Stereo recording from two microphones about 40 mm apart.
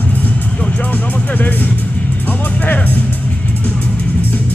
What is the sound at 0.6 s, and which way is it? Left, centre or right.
Music, left.